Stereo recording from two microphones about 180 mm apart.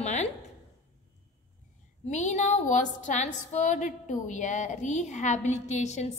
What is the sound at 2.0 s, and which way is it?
A woman's voice, 40° left (ahead or behind).